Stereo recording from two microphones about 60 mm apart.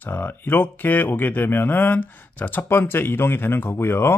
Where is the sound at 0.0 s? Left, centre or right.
Left.